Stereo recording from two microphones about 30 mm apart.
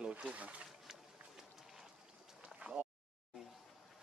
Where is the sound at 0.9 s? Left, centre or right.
Centre.